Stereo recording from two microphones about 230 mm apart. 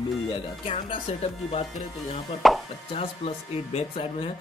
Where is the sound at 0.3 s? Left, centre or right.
Left.